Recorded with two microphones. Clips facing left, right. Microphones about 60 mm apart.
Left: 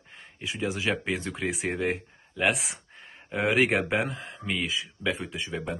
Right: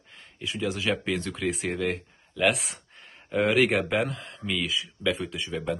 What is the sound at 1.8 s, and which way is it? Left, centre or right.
Speech, left.